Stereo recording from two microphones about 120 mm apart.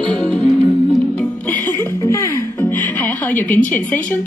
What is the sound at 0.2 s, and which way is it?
Music, 5° left (ahead or behind).